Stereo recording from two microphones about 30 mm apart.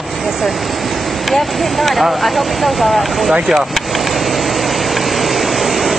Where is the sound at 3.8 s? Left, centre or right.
Centre.